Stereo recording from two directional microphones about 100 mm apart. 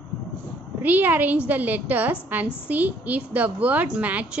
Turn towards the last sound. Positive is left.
turn(degrees=-15)  # may be behind; listen again after turning